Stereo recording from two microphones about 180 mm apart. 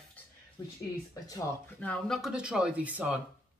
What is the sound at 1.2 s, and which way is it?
Speech, 20° left (ahead or behind).